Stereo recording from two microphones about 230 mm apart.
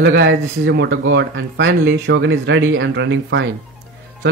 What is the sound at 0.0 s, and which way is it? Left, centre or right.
Speech, right.